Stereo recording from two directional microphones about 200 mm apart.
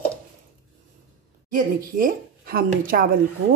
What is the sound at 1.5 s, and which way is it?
Speech, 45° right (ahead or behind).